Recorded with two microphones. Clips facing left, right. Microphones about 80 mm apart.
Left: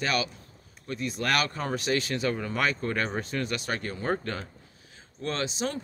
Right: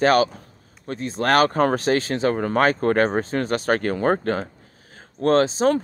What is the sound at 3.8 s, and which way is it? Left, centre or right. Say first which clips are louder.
Speech: right 10 dB; right.